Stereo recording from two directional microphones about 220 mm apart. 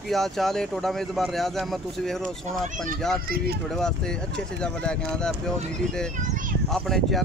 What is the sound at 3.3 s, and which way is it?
Speech, 45° right (ahead or behind).